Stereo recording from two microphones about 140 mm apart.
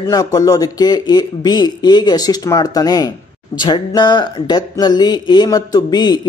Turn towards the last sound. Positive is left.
turn(degrees=30)  # may be behind; listen again after turning